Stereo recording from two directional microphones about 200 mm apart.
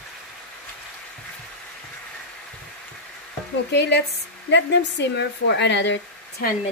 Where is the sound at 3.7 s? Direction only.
60° left (ahead or behind).